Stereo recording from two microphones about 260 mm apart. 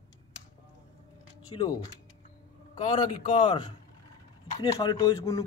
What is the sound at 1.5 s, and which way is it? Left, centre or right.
A man's voice, centre.